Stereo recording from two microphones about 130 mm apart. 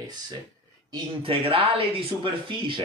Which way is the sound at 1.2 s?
45° right (ahead or behind).